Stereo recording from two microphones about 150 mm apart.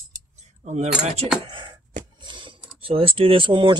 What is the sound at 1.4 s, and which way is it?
Speech, 35° right (ahead or behind).